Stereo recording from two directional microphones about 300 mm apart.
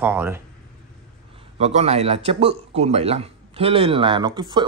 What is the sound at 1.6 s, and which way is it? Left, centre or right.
Speech, right.